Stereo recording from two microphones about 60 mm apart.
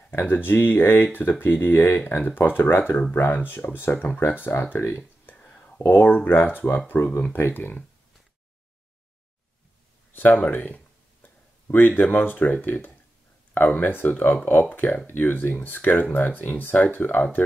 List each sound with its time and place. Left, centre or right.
0.2 s speech: left
5.3 s a sound: left
5.9 s speech: left
10.1 s speech: left